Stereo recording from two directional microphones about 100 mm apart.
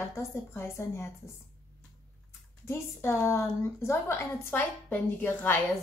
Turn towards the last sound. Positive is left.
turn(degrees=20)  # may be behind; listen again after turning